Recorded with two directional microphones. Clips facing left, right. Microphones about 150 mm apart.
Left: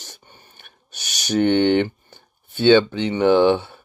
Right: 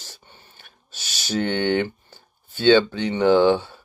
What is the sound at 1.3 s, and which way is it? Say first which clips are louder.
Speech: left 5 dB; 20° left (ahead or behind).